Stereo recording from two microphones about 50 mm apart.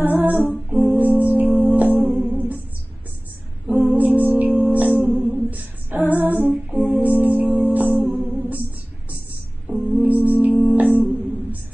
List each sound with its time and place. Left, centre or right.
0.0 s music: right
3.8 s music: right
5.3 s female singing: right
6.7 s music: right
9.8 s music: right